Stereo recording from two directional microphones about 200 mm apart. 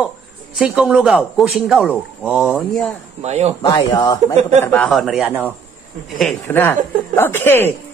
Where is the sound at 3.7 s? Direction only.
20° left (ahead or behind).